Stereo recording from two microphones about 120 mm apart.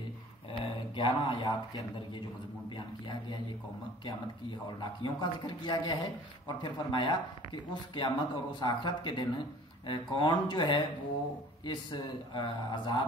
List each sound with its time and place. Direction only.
0.5 s speech: 45° left (ahead or behind)
4.0 s speech: 40° left (ahead or behind)